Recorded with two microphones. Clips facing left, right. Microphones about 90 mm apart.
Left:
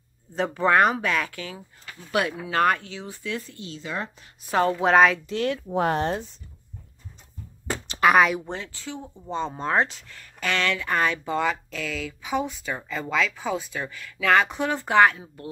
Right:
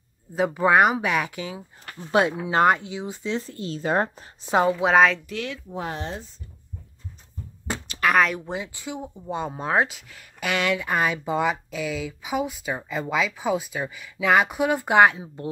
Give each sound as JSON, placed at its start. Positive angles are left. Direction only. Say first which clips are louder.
{"t": 0.3, "sound": "speech", "louder": "right 2 dB", "side_deg": -10}
{"t": 3.4, "sound": "speech", "louder": "right 9 dB", "side_deg": -40}
{"t": 4.6, "sound": "a woman's voice", "louder": "left 1 dB", "side_deg": -5}
{"t": 5.5, "sound": "speech", "louder": "left 8 dB", "side_deg": 60}
{"t": 8.0, "sound": "speech", "louder": "left 2 dB", "side_deg": 10}
{"t": 8.5, "sound": "speech", "louder": "right 3 dB", "side_deg": -15}